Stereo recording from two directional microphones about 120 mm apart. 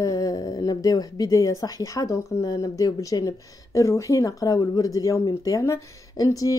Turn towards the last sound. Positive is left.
turn(degrees=30)  # may be behind; listen again after turning